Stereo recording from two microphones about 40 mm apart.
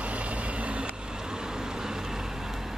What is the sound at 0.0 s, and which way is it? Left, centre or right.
Vehicle, right.